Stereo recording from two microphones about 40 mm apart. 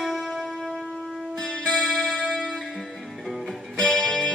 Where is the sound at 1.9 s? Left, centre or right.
Centre.